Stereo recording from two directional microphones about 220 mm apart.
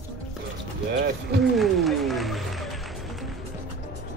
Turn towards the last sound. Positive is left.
turn(degrees=0)  # may be behind; listen again after turning